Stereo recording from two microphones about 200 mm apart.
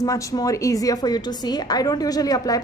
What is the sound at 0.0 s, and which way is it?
A woman's voice, 15° left (ahead or behind).